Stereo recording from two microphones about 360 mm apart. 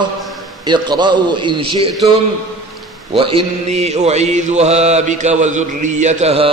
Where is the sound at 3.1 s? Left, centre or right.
Centre.